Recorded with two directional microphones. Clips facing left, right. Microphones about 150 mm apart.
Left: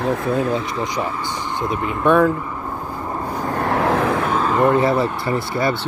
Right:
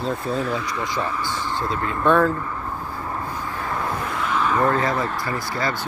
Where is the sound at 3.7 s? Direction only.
80° left.